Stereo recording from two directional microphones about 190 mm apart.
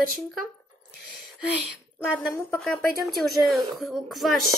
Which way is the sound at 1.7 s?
10° left (ahead or behind).